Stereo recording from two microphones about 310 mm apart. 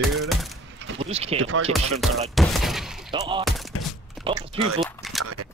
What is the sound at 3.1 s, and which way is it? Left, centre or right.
Speech, centre.